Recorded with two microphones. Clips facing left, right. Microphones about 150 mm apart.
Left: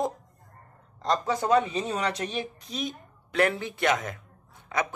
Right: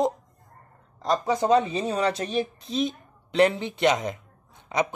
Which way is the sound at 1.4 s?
25° right (ahead or behind).